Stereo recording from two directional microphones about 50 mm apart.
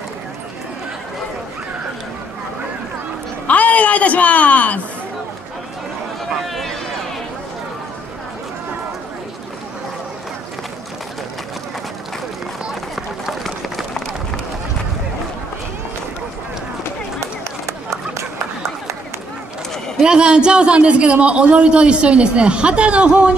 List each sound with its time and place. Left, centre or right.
3.4 s a sound: left
6.4 s run: centre
12.9 s run: centre
17.2 s run: right
20.1 s a man's voice: centre